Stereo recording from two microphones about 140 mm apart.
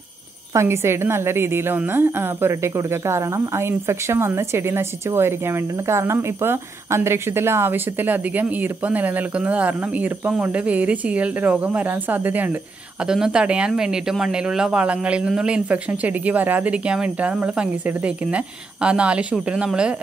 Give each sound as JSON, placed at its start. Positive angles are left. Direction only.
{"t": 0.5, "sound": "a woman's voice", "side_deg": -20}